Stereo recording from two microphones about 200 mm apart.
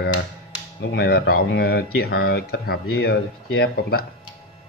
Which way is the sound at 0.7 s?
55° left (ahead or behind).